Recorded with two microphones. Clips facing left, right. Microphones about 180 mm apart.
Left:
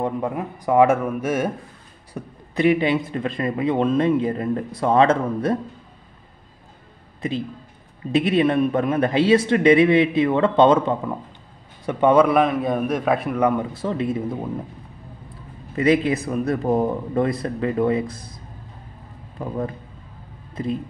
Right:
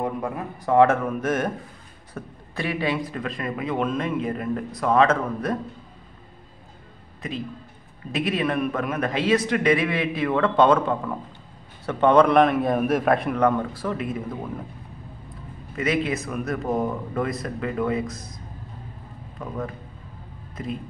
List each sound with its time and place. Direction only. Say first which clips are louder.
0.0 s speech: left 3 dB; 20° left (ahead or behind)
7.2 s a man's voice: left 5 dB; 30° left (ahead or behind); by 13.7 s 10° left (ahead or behind)
13.7 s speech: left 4 dB; 25° left (ahead or behind)
15.8 s a man's voice: left 6 dB; 35° left (ahead or behind)